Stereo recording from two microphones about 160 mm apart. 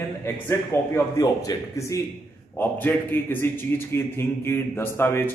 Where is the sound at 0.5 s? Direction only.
20° left (ahead or behind).